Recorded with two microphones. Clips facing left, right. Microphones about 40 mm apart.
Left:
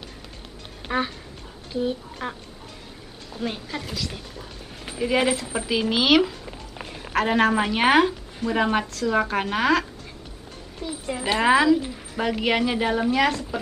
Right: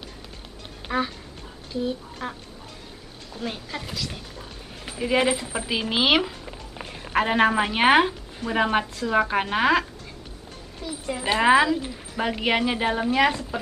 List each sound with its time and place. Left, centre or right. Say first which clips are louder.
0.9 s speech: left 1 dB; centre
3.3 s a woman's voice: left 2 dB; centre
6.4 s a sound: even; centre
7.2 s a woman's voice: even; centre
10.8 s a woman's voice: left 1 dB; centre